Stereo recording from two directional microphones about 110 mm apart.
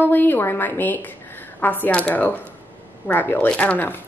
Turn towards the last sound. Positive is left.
turn(degrees=15)  # may be behind; listen again after turning